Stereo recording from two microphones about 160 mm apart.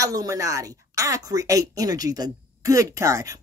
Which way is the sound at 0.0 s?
20° right (ahead or behind).